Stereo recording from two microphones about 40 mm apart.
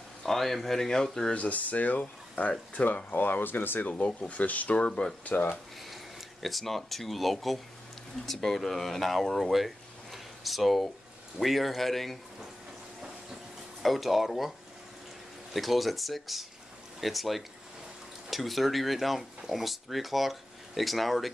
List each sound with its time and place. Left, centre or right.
0.2 s speech: centre
1.3 s speech: left
3.1 s speech: left
3.8 s speech: left
5.2 s speech: left
6.4 s speech: centre
10.1 s a sound: centre
11.3 s speech: centre
13.8 s speech: centre
15.5 s speech: centre